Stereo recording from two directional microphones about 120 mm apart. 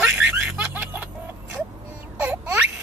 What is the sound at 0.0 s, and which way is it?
Snicker, 5° right (ahead or behind).